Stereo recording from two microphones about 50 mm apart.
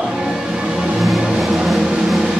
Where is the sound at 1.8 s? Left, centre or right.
Centre.